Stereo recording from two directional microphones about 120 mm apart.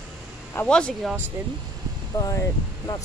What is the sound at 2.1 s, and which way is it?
Speech, 25° left (ahead or behind).